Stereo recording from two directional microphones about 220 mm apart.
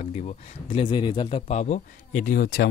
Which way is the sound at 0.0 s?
30° left (ahead or behind).